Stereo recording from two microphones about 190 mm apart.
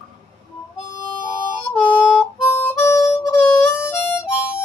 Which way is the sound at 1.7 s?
10° left (ahead or behind).